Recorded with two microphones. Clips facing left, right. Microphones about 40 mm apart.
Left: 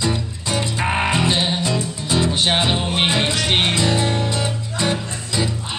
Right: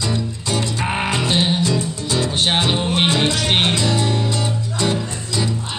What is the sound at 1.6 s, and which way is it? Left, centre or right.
Music, centre.